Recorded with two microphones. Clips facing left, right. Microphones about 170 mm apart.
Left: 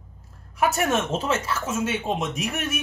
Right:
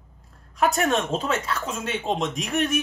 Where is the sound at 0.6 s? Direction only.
5° left (ahead or behind).